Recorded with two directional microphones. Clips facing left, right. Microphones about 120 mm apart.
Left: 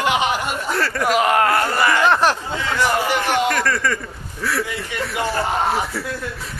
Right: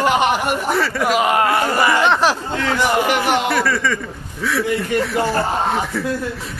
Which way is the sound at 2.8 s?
20° right (ahead or behind).